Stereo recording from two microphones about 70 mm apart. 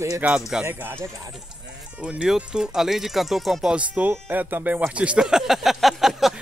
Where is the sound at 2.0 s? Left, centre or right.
Centre.